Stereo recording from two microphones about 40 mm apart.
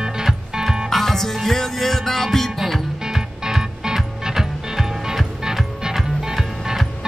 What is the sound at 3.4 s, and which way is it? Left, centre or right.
Music, centre.